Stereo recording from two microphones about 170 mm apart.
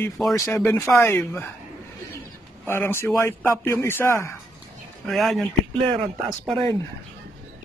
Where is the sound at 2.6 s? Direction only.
15° left (ahead or behind).